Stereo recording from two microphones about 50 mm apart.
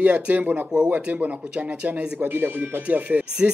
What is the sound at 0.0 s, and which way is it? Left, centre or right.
Speech, right.